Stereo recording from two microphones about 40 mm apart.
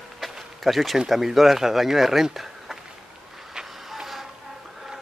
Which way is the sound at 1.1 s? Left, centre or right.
Centre.